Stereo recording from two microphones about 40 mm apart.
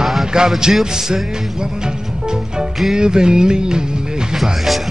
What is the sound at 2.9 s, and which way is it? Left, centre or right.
Music, centre.